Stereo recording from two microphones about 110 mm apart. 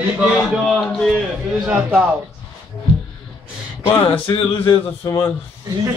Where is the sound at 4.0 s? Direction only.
45° left (ahead or behind).